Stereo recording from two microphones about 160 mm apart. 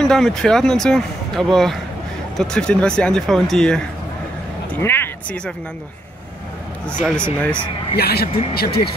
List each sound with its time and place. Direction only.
0.0 s speech: 5° left (ahead or behind)
4.7 s a sound: 15° left (ahead or behind)
7.0 s speech: 5° left (ahead or behind)
7.9 s speech: 80° left